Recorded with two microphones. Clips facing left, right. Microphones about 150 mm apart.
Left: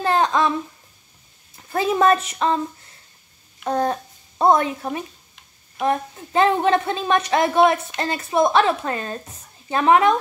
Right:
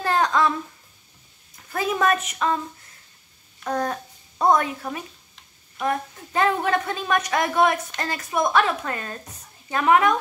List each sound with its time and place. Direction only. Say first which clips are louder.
0.0 s babbling: left 2 dB; 25° left (ahead or behind)
1.7 s a woman's voice: left 5 dB; 30° left (ahead or behind)
3.6 s a child's voice: left 4 dB; 30° left (ahead or behind)